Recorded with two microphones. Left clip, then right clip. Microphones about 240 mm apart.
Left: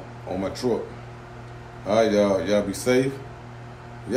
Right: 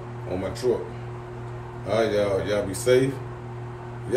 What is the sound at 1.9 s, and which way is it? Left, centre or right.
Speech, left.